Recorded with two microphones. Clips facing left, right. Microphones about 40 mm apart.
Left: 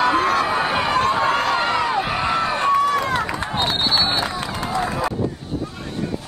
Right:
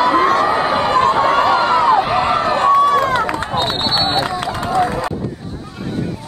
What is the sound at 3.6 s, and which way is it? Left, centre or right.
Run, centre.